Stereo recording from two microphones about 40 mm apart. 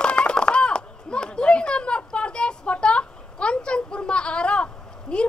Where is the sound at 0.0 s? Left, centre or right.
Left.